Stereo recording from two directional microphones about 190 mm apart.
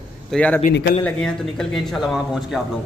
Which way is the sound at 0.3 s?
5° left (ahead or behind).